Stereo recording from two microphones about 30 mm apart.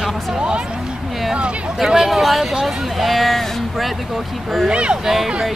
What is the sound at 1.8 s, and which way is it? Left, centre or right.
Speech, centre.